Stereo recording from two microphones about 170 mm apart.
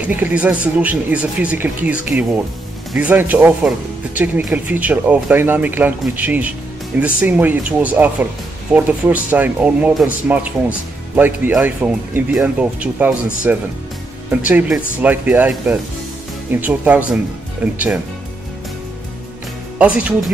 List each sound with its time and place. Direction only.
0.0 s speech: 10° right (ahead or behind)
19.8 s speech: 5° right (ahead or behind)